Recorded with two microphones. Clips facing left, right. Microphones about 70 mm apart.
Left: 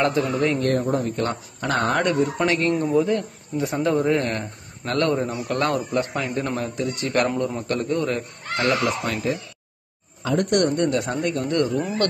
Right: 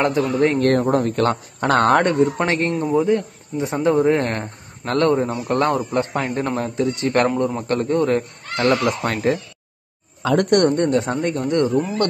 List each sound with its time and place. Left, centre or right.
0.2 s speech: right
2.0 s speech: right
2.9 s a man's voice: right
4.2 s a man's voice: right
5.9 s speech: right
10.9 s a man's voice: right